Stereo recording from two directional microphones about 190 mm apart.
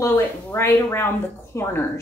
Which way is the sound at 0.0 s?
15° left (ahead or behind).